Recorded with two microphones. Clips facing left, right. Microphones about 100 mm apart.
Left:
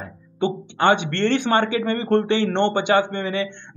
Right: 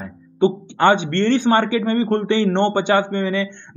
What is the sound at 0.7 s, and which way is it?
Speech, 40° right (ahead or behind).